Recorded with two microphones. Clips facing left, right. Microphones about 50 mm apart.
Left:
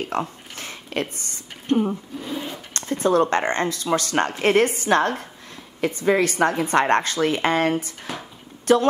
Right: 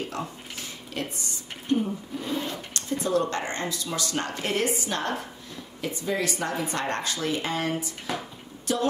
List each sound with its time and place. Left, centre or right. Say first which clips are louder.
0.1 s speech: left 7 dB; left
2.1 s speech: even; centre
2.7 s speech: left 7 dB; left